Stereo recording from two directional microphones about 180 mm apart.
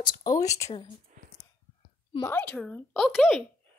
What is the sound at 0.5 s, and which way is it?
Speech, 15° left (ahead or behind).